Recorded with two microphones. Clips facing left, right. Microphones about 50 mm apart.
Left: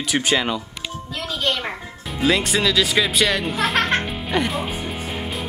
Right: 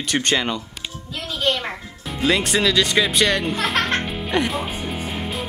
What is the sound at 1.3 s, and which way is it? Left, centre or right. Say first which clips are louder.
Music: right 2 dB; centre.